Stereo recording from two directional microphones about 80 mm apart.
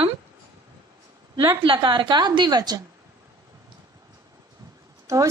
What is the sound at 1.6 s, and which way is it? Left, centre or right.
A woman's voice, right.